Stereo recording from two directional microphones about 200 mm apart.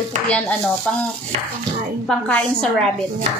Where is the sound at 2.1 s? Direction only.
5° left (ahead or behind).